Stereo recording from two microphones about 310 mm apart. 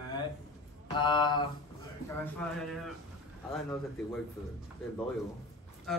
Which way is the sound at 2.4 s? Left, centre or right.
Centre.